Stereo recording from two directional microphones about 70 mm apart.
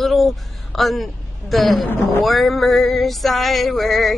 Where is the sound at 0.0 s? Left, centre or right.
Centre.